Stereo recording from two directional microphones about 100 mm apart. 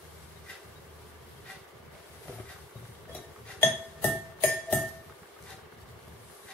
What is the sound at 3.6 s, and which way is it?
Music, 15° left (ahead or behind).